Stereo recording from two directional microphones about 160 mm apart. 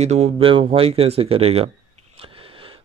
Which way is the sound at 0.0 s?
45° right (ahead or behind).